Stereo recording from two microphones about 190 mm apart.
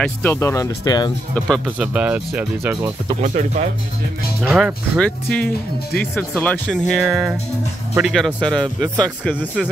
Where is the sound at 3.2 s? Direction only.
40° right (ahead or behind).